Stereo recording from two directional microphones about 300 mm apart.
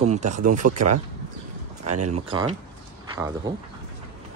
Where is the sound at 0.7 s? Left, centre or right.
Right.